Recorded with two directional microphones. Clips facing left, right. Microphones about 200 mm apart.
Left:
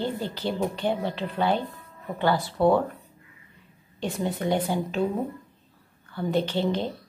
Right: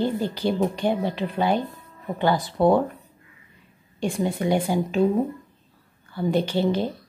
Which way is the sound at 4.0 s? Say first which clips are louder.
Right 4 dB; 10° right (ahead or behind).